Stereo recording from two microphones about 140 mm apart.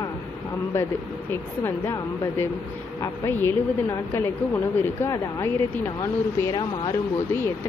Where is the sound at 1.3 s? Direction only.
15° left (ahead or behind).